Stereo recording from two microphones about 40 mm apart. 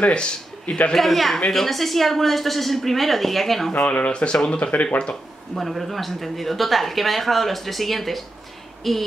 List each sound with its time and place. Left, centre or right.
0.0 s speech: left
0.9 s speech: centre
3.8 s speech: left
5.5 s speech: centre